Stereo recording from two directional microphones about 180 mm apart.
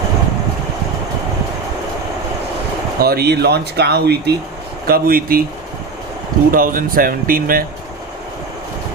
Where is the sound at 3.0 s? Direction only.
60° right (ahead or behind).